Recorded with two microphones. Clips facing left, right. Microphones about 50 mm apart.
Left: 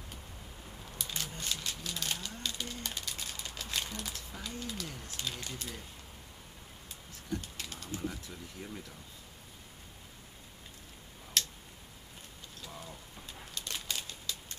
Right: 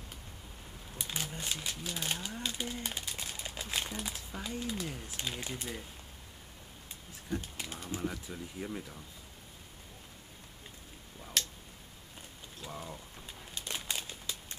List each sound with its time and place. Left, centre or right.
0.9 s speech: centre
7.2 s speech: centre
11.4 s tick-tock: centre
12.6 s bird: centre